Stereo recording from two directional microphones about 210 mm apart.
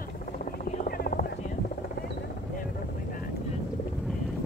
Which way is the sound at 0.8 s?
45° left (ahead or behind).